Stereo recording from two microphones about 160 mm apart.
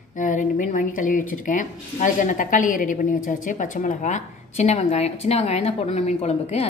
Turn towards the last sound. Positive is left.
turn(degrees=40)  # may be behind; listen again after turning